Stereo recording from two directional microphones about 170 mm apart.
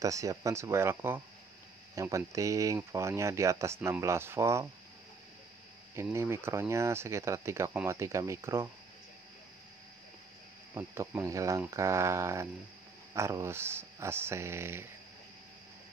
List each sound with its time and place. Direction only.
0.0 s speech: 20° right (ahead or behind)
5.9 s speech: 15° right (ahead or behind)
10.7 s speech: 15° right (ahead or behind)